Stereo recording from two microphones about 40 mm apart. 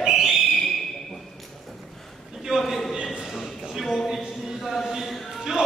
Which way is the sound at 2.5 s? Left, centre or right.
Right.